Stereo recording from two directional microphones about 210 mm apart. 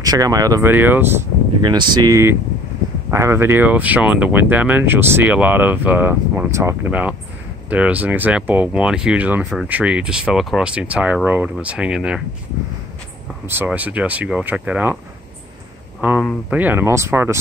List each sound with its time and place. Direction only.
0.0 s speech: 15° right (ahead or behind)
1.6 s speech: 20° right (ahead or behind); by 12.2 s 5° right (ahead or behind)
13.5 s speech: 10° right (ahead or behind)
16.4 s speech: 10° right (ahead or behind)